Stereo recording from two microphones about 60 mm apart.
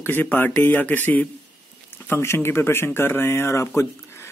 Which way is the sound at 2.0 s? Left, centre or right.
Left.